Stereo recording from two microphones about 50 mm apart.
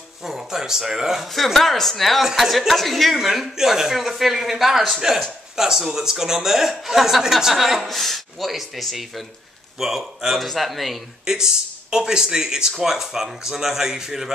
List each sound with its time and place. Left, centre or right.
0.2 s speech: centre
11.2 s speech: centre